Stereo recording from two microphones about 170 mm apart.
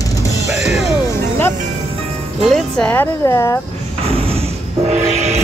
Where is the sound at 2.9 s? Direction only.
15° left (ahead or behind).